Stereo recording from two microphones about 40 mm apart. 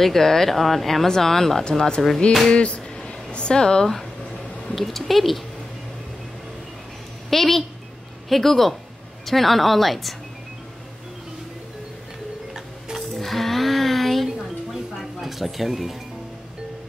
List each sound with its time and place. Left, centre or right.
0.0 s speech: centre
1.6 s speech: centre
2.5 s speech: left
3.0 s a sound: left
3.8 s speech: centre
7.2 s a woman's voice: centre
13.1 s music: centre